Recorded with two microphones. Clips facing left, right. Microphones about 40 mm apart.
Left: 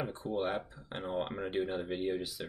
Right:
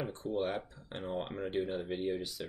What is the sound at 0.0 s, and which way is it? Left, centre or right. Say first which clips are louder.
Speech: even; centre.